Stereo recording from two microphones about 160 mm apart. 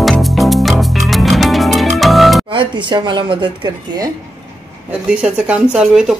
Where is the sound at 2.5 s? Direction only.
30° right (ahead or behind).